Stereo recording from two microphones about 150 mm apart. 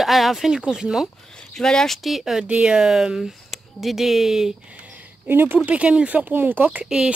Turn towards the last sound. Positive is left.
turn(degrees=-5)  # may be behind; listen again after turning